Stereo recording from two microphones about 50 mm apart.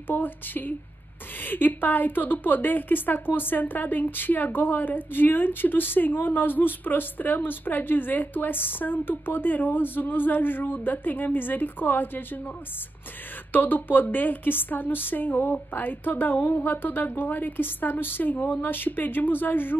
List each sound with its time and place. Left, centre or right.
0.1 s a woman's voice: left
13.5 s a woman's voice: left